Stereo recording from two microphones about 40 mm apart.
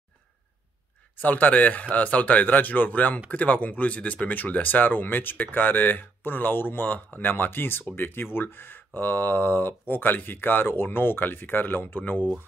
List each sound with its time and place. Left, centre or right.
1.2 s speech: left
12.0 s speech: left